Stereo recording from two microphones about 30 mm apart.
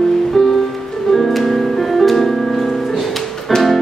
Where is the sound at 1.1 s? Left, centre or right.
Centre.